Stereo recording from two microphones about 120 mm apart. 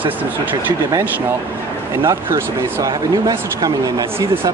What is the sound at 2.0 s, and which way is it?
Speech, 30° right (ahead or behind).